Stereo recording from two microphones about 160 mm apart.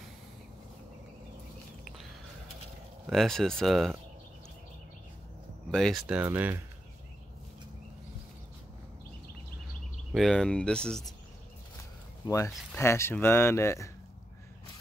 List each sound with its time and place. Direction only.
3.1 s speech: centre (ahead or behind)
5.7 s speech: centre (ahead or behind); by 6.6 s 15° right (ahead or behind)
10.1 s speech: centre (ahead or behind)
12.3 s speech: 20° left (ahead or behind)